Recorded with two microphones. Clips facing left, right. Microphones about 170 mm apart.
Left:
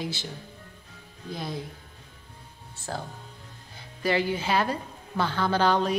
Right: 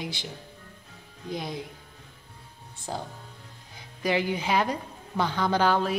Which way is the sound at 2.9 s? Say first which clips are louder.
Even; 15° right (ahead or behind).